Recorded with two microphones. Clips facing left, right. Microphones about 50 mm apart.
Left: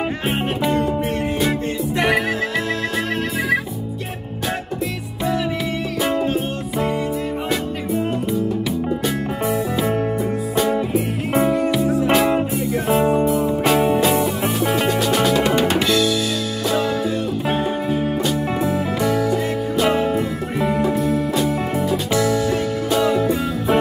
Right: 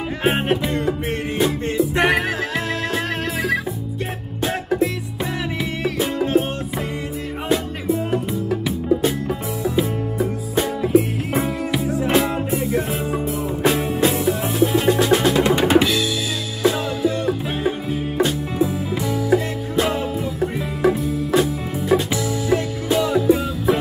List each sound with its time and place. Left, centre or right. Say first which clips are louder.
11.5 s music: left 4 dB; centre
14.9 s music: right 1 dB; right
22.1 s music: left 2 dB; centre
22.9 s music: left 1 dB; centre